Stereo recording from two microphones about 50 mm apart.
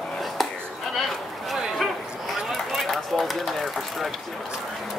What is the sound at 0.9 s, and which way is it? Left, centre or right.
Speech, centre.